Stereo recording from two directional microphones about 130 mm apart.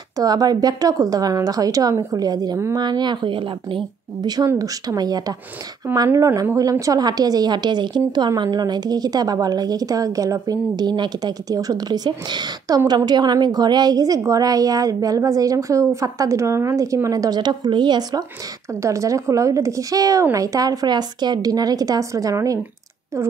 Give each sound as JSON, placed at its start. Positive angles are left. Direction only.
{"t": 0.2, "sound": "a woman's voice", "side_deg": -30}
{"t": 18.8, "sound": "a woman's voice", "side_deg": -25}